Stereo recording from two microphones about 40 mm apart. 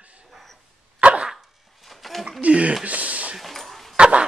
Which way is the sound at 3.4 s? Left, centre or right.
Centre.